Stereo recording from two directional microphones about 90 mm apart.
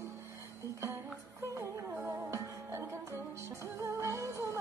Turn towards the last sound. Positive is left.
turn(degrees=-35)  # may be behind; listen again after turning